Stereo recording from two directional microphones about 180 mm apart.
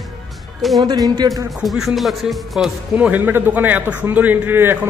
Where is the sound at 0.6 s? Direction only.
Centre (ahead or behind).